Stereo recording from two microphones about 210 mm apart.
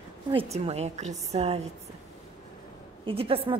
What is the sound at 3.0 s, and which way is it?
Speech, 25° right (ahead or behind).